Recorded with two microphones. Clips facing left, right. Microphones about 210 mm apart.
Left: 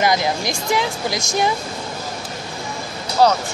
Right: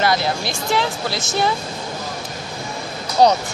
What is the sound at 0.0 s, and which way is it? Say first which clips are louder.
Speech: left 1 dB; 15° left (ahead or behind).